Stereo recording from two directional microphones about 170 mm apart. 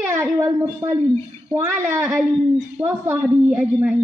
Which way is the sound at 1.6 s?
15° right (ahead or behind).